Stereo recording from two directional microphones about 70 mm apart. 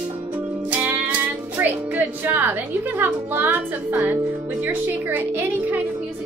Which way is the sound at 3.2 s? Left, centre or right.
Right.